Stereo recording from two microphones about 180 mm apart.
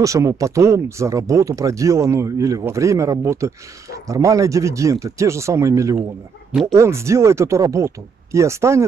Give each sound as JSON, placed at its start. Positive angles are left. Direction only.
{"t": 0.0, "sound": "speech", "side_deg": -15}